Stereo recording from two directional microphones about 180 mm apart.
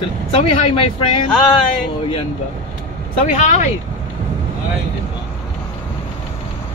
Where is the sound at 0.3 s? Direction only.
35° left (ahead or behind).